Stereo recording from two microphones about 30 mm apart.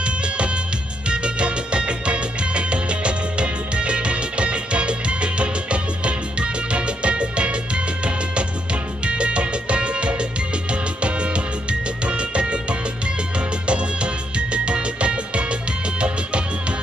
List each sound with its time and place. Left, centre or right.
1.0 s music: right